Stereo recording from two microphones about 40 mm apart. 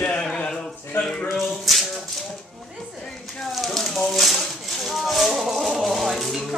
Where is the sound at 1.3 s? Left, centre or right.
Centre.